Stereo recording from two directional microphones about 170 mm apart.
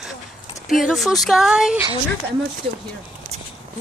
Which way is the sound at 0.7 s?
Centre (ahead or behind).